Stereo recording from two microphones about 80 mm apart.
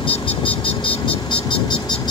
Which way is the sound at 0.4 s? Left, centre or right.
Left.